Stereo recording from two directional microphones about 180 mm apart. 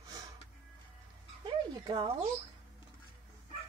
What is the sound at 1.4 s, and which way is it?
Speech, 25° right (ahead or behind).